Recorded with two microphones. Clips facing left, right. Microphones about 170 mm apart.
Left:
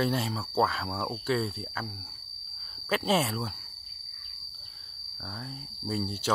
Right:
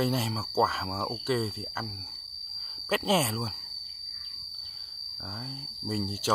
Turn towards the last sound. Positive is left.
turn(degrees=0)  # may be behind; listen again after turning